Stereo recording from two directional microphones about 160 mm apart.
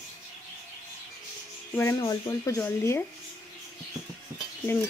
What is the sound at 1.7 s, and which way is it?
Speech, 20° left (ahead or behind).